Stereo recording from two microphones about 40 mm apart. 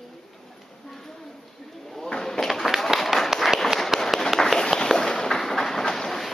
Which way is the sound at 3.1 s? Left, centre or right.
Centre.